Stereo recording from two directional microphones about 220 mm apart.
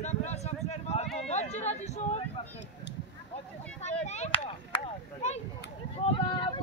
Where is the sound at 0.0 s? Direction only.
30° left (ahead or behind).